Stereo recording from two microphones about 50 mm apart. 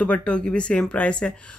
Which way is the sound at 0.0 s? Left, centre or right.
Left.